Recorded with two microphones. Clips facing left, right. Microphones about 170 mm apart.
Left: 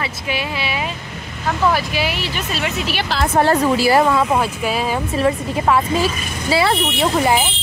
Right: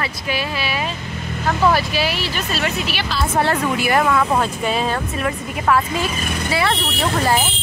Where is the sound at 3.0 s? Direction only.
90° left.